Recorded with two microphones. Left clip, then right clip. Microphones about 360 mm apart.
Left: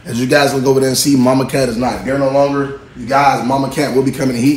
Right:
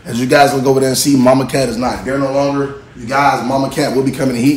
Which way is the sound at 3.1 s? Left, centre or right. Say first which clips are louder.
Left 1 dB; left.